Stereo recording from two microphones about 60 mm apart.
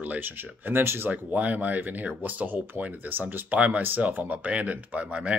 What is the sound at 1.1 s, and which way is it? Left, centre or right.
Speech, right.